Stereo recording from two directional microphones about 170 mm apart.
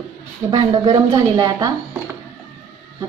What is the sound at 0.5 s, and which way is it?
A woman's voice, 25° right (ahead or behind).